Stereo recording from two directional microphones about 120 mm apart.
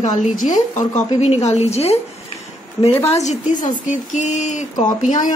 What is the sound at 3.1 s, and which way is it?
Speech, 75° left (ahead or behind).